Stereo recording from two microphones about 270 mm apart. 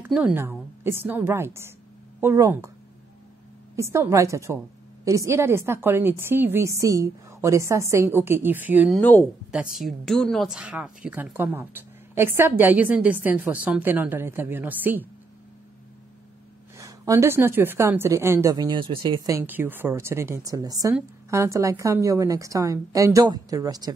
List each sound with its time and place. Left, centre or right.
0.0 s a woman's voice: centre
3.7 s a woman's voice: centre
16.7 s a woman's voice: centre